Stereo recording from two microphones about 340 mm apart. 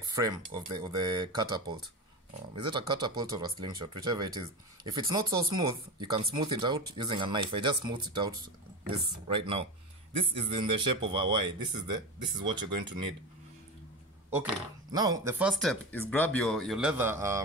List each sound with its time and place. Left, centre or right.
0.1 s speech: centre
14.9 s speech: centre